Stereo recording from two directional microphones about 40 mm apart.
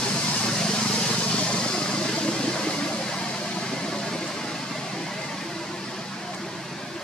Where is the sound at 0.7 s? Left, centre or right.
Left.